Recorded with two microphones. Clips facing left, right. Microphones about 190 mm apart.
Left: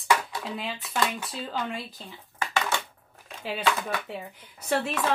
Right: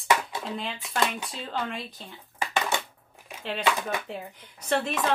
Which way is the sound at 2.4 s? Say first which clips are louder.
Even; 15° right (ahead or behind).